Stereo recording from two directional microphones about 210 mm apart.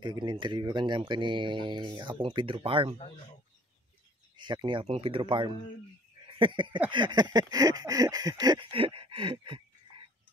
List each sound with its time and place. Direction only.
0.0 s speech: 20° right (ahead or behind)
4.4 s speech: 20° right (ahead or behind)